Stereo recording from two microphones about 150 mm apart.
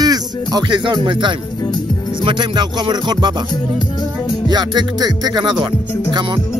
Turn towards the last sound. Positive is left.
turn(degrees=-30)  # may be behind; listen again after turning